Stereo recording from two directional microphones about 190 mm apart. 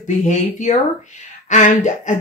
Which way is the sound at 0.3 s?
40° left (ahead or behind).